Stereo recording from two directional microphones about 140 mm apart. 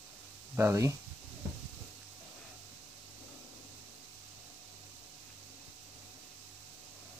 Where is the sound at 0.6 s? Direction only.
20° right (ahead or behind).